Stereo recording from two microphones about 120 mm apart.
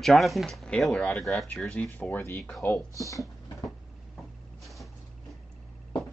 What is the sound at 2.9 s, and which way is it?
Speech, 25° left (ahead or behind).